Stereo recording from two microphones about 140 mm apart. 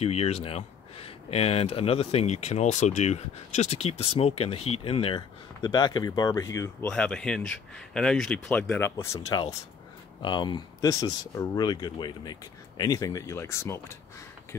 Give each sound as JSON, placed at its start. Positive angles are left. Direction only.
{"t": 0.0, "sound": "speech", "side_deg": 45}
{"t": 6.8, "sound": "speech", "side_deg": 5}
{"t": 10.2, "sound": "speech", "side_deg": 35}